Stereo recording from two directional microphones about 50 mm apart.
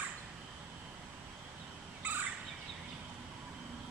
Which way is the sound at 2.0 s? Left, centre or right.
Right.